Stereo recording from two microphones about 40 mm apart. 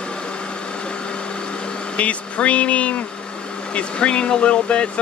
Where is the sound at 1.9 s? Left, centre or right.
Left.